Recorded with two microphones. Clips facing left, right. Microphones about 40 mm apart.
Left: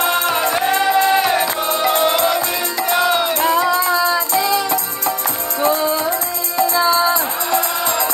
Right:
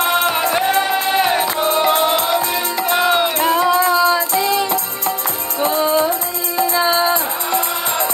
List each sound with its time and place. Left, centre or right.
3.2 s music: right